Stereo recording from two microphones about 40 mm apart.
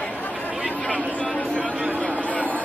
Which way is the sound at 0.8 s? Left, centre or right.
Left.